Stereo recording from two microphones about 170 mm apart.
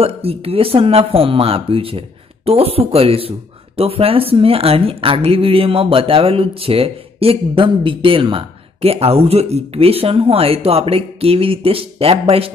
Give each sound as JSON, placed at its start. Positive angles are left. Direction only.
{"t": 0.0, "sound": "speech", "side_deg": -35}